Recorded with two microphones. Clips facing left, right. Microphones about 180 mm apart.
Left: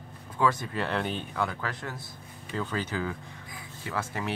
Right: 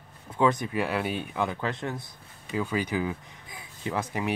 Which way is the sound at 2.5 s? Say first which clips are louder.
Right 4 dB; 10° right (ahead or behind).